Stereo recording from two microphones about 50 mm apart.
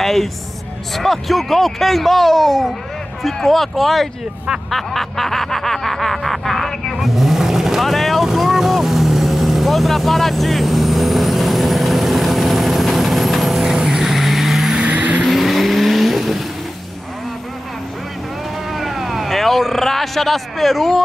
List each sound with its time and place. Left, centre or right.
0.0 s speech: centre
4.6 s snicker: centre
14.8 s vehicle: right
15.3 s vehicle: centre
18.8 s speech: centre